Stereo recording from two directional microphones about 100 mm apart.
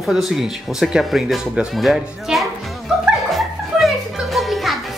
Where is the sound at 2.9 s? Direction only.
5° right (ahead or behind).